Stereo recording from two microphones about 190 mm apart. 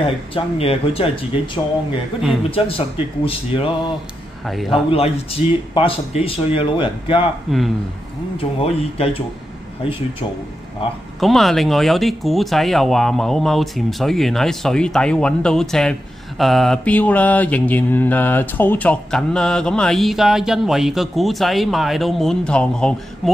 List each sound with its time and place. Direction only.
0.0 s speech: 30° left (ahead or behind)
4.5 s speech: centre (ahead or behind)
4.9 s speech: 30° left (ahead or behind)
7.5 s speech: centre (ahead or behind)
8.4 s speech: 30° left (ahead or behind)
11.1 s speech: centre (ahead or behind)